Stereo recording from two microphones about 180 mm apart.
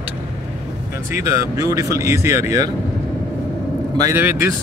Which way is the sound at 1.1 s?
15° right (ahead or behind).